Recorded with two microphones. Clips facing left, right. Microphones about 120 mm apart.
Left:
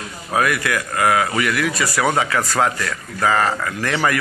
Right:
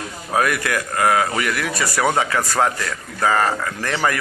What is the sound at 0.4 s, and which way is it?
Speech, 35° right (ahead or behind).